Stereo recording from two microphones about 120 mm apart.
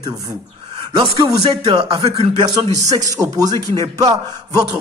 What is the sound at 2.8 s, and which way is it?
Speech, 30° right (ahead or behind).